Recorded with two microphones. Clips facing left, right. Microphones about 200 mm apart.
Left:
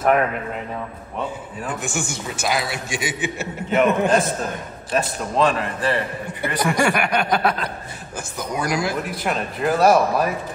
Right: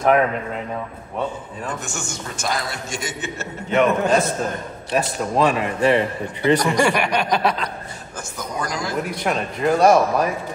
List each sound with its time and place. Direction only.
1.8 s speech: 5° left (ahead or behind)
4.9 s a man's voice: 10° right (ahead or behind)
5.8 s a man's voice: 20° right (ahead or behind)
6.6 s speech: 5° left (ahead or behind)